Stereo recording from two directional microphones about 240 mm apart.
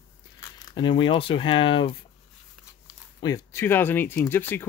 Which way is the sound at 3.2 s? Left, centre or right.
Centre.